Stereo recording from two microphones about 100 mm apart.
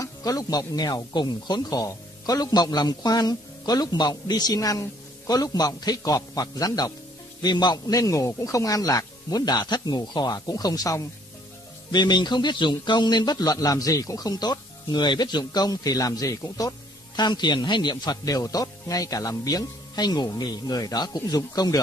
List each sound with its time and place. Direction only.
0.0 s a man's voice: 40° left (ahead or behind)
11.9 s a man's voice: 50° left (ahead or behind)